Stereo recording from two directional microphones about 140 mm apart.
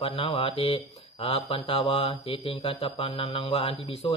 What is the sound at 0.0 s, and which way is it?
A man's voice, 45° left (ahead or behind).